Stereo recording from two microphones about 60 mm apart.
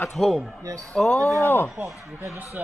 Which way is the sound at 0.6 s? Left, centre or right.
Right.